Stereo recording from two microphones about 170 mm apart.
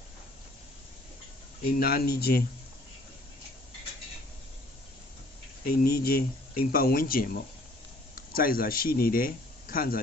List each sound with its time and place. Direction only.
1.7 s speech: 65° left (ahead or behind)
5.7 s speech: 65° left (ahead or behind)
8.3 s speech: 60° left (ahead or behind)